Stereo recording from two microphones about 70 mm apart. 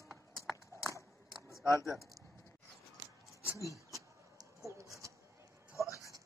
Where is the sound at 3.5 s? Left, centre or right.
Left.